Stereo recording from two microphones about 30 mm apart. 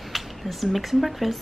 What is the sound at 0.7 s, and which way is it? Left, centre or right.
Speech, centre.